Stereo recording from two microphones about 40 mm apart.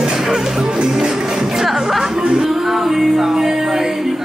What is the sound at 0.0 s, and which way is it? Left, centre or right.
Music, centre.